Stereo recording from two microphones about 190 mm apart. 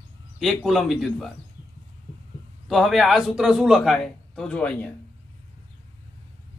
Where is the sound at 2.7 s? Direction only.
Centre (ahead or behind).